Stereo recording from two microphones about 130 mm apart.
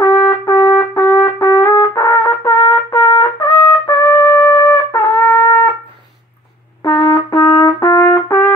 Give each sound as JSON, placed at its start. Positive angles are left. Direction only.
{"t": 0.0, "sound": "trumpet", "side_deg": 25}
{"t": 6.8, "sound": "trumpet", "side_deg": 30}